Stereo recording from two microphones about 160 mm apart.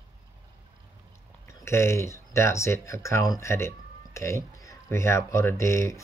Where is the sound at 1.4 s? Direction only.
15° left (ahead or behind).